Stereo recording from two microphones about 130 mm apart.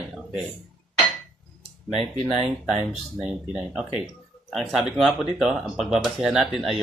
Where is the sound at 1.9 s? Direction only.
55° right (ahead or behind).